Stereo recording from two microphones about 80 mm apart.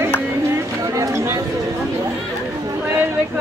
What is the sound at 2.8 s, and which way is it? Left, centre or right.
Chatter, right.